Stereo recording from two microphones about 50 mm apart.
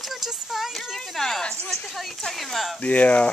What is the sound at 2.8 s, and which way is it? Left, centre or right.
Speech, left.